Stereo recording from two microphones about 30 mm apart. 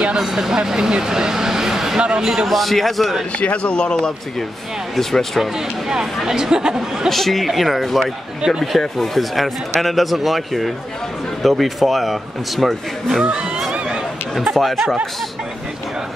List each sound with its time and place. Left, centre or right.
0.2 s speech: centre
1.0 s vehicle: centre
2.0 s speech: right
2.4 s speech: centre
3.3 s speech: left
3.7 s a man's voice: left
6.2 s speech: right
7.1 s speech: centre
13.2 s speech: right
13.6 s a sound: centre
14.5 s speech: centre